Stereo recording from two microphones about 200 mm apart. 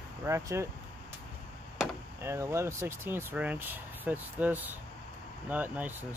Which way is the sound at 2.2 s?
15° right (ahead or behind).